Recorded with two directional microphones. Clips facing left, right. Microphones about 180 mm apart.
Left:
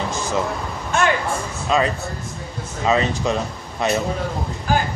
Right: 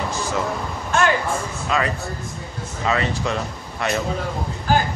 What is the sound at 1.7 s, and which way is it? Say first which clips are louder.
Speech: left 4 dB; 25° left (ahead or behind).